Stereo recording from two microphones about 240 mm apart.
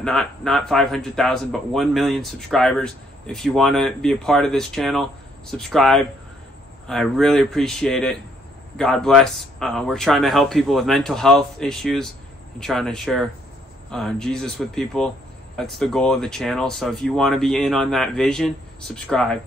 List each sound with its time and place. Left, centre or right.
0.0 s a man's voice: centre